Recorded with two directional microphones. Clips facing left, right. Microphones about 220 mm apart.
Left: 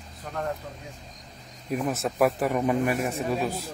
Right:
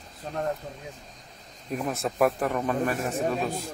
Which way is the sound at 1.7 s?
5° left (ahead or behind).